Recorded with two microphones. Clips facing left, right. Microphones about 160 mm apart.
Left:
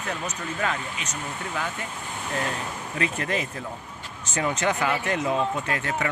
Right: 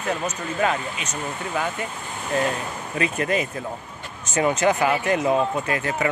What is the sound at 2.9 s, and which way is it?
Speech, 15° right (ahead or behind).